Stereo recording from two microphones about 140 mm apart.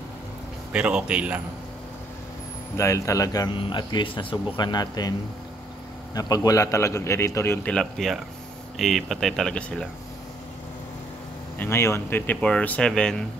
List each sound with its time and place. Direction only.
0.7 s speech: 5° right (ahead or behind)
2.8 s speech: 20° left (ahead or behind)
6.1 s a man's voice: 25° left (ahead or behind)
7.7 s speech: centre (ahead or behind)
11.5 s speech: 15° left (ahead or behind)